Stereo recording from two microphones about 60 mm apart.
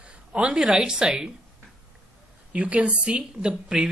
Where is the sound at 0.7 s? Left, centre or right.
Centre.